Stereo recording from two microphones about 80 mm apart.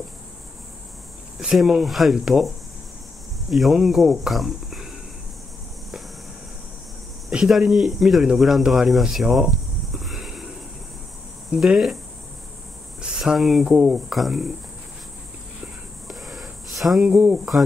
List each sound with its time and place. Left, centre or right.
1.4 s speech: centre
7.2 s speech: centre
11.5 s speech: centre
13.0 s speech: centre
14.0 s speech: centre
16.1 s a sound: centre
17.1 s speech: right